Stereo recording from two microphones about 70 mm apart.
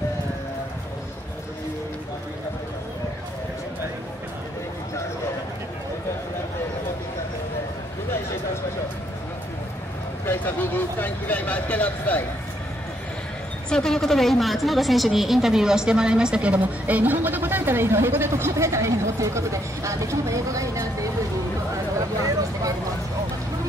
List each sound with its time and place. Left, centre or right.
10.2 s speech: left
13.7 s a woman's voice: centre; by 21.1 s right